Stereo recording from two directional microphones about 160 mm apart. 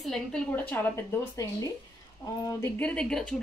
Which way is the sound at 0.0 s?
5° left (ahead or behind).